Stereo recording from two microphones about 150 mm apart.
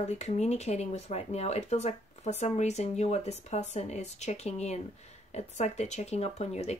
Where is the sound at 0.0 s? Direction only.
50° left (ahead or behind).